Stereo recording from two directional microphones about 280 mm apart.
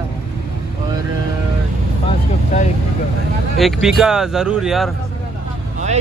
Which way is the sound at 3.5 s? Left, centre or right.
Centre.